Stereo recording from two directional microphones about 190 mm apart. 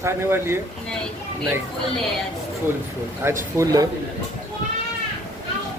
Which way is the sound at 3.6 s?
20° right (ahead or behind).